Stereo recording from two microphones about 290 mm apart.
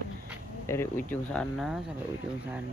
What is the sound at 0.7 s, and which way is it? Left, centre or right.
Speech, centre.